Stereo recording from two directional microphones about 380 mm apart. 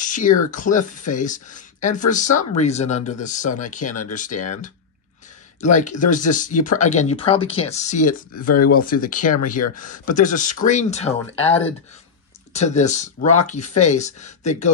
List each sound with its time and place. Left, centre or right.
0.0 s speech: centre
5.6 s speech: centre
8.5 s speech: left
8.7 s speech: left